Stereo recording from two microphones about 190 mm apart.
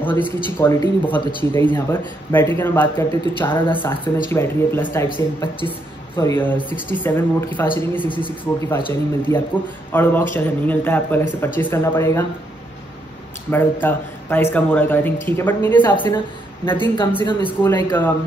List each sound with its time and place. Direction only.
0.0 s speech: 10° left (ahead or behind)
13.5 s speech: 10° left (ahead or behind)